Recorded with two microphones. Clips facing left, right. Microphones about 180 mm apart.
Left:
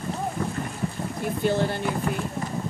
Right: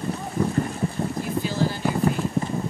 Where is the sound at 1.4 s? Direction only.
60° left (ahead or behind).